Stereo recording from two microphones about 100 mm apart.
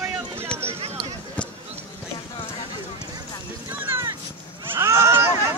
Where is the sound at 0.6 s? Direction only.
80° right.